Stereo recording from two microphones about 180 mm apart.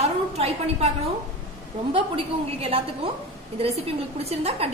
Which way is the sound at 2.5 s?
35° right (ahead or behind).